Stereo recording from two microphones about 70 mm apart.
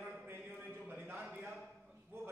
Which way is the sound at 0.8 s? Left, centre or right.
Centre.